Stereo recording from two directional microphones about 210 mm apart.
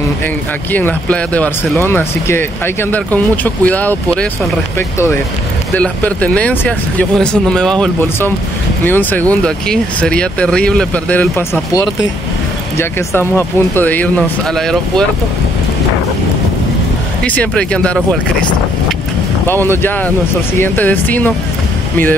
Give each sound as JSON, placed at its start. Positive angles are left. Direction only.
{"t": 0.7, "sound": "speech", "side_deg": 10}
{"t": 17.2, "sound": "speech", "side_deg": 5}
{"t": 19.4, "sound": "speech", "side_deg": 10}